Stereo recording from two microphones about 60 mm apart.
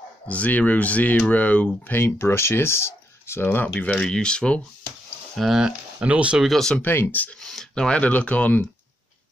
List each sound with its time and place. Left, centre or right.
0.3 s speech: left
2.0 s speech: left
3.4 s speech: left
4.0 s speech: centre
5.3 s speech: centre
5.9 s speech: right
6.3 s speech: centre
6.8 s speech: left
7.3 s speech: centre; by 8.6 s left